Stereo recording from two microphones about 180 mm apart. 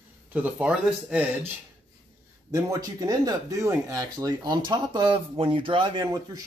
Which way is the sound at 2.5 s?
20° right (ahead or behind).